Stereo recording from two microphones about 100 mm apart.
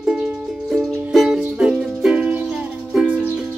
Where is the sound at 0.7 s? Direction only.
Centre (ahead or behind).